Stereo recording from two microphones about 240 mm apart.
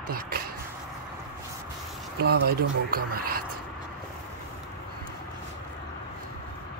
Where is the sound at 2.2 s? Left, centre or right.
Right.